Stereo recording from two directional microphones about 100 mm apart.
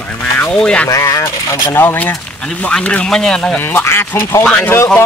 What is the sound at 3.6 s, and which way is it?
Speech, 20° left (ahead or behind).